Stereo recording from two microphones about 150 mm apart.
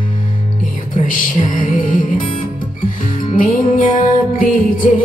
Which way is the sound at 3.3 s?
65° left (ahead or behind).